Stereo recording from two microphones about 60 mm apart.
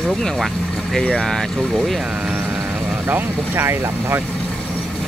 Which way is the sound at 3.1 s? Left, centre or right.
Right.